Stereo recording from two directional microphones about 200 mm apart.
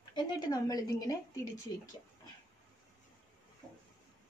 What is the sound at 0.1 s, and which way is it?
Speech, 20° left (ahead or behind).